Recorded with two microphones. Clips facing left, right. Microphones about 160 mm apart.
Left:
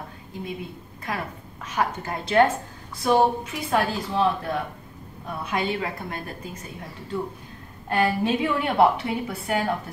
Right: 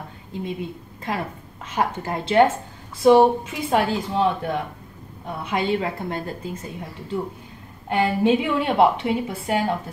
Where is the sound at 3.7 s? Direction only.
20° right (ahead or behind).